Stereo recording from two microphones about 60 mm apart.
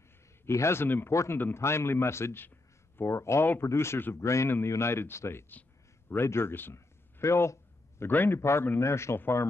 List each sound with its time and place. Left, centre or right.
0.5 s speech: left
0.8 s a man's voice: left
1.1 s speech: left
5.5 s a sound: left
6.1 s speech: left
8.0 s a man's voice: left
8.4 s speech: left